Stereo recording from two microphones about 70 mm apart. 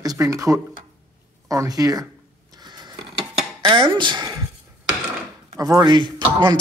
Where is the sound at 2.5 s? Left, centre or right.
Right.